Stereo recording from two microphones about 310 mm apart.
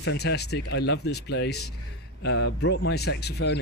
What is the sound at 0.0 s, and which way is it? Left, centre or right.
Speech, left.